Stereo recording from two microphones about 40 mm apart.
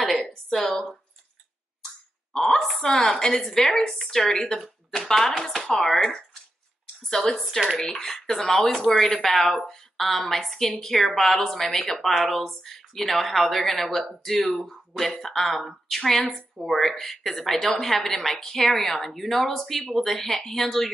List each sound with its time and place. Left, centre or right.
0.0 s a sound: centre
0.5 s a woman's voice: centre
2.3 s a woman's voice: centre